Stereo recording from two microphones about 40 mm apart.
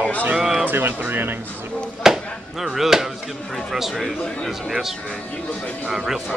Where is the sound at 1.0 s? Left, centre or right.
Right.